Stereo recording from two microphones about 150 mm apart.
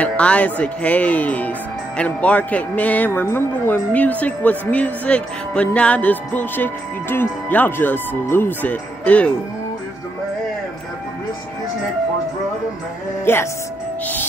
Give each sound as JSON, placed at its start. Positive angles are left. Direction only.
{"t": 0.0, "sound": "a man's voice", "side_deg": 10}
{"t": 13.2, "sound": "speech", "side_deg": 15}